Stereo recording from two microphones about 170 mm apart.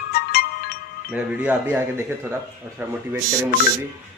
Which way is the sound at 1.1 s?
10° right (ahead or behind).